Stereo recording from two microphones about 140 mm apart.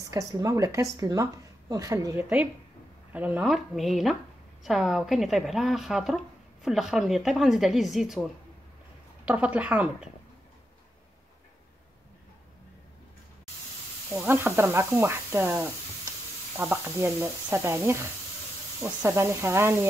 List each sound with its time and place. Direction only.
0.0 s a woman's voice: 25° right (ahead or behind)
3.1 s a woman's voice: 10° right (ahead or behind)
14.1 s a woman's voice: 15° right (ahead or behind)